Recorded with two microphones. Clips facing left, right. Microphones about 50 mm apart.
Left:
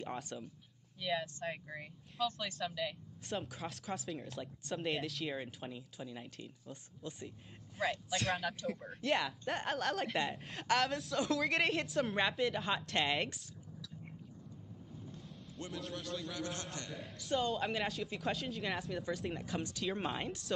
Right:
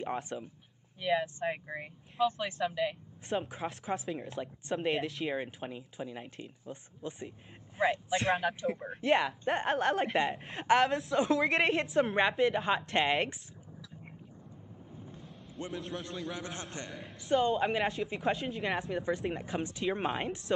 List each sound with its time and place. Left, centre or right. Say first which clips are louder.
0.0 s speech: right 6 dB; right
5.2 s speech: right 6 dB; right
9.7 s speech: right 7 dB; centre
10.1 s speech: right 6 dB; right; by 12.6 s centre
12.8 s speech: right 6 dB; right
13.3 s a sound: right 3 dB; right
15.7 s speech: right 2 dB; centre
16.3 s speech: right 1 dB; right
19.3 s speech: right 4 dB; right
20.2 s speech: right 6 dB; centre